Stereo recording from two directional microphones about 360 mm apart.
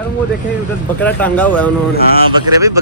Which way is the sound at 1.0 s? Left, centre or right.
Centre.